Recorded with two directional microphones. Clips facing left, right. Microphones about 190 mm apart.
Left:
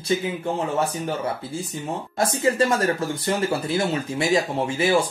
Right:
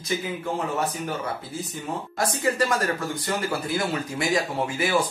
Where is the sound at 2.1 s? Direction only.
25° left (ahead or behind).